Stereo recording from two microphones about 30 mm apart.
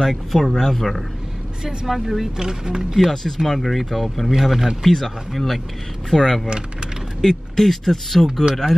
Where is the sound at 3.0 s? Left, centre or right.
Centre.